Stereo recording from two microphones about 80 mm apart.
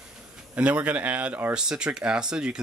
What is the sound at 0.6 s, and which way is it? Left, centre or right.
Speech, centre.